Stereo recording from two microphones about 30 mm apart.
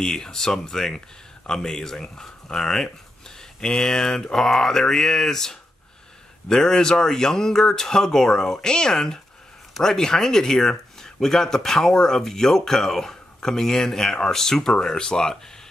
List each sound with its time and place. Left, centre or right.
0.0 s speech: centre
2.5 s speech: centre